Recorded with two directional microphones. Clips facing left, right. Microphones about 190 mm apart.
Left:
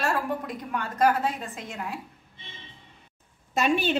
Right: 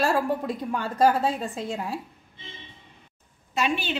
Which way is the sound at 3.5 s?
45° left (ahead or behind).